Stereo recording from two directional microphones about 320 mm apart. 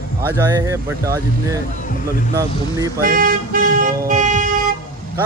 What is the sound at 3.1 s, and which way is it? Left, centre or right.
Speech, right.